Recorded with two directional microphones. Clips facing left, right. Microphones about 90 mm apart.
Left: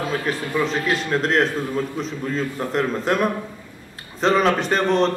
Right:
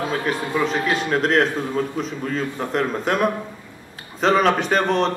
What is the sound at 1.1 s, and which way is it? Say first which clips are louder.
A man's voice: right 1 dB; 5° right (ahead or behind).